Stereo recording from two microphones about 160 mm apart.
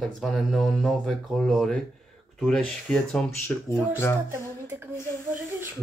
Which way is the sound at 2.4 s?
5° left (ahead or behind).